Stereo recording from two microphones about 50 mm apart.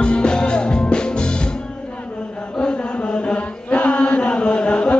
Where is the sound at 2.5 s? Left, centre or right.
Left.